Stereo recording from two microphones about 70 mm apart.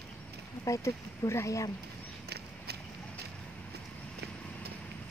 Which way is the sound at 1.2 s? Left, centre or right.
Left.